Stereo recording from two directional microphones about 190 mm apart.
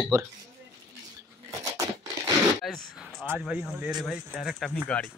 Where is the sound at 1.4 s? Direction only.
15° right (ahead or behind).